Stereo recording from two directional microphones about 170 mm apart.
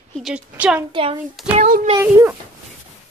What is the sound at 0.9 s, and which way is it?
Speech, 30° right (ahead or behind).